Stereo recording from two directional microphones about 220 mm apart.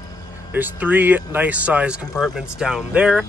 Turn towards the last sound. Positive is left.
turn(degrees=-5)  # may be behind; listen again after turning